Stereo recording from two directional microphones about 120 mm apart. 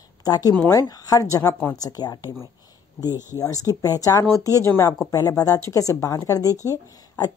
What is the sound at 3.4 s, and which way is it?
Speech, 30° left (ahead or behind).